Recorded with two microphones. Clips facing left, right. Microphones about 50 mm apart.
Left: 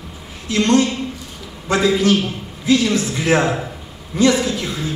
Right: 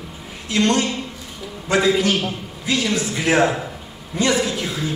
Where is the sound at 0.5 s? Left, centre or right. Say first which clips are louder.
Left 3 dB; centre.